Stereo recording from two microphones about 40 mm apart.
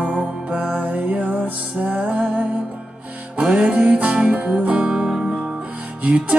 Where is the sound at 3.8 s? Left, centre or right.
Right.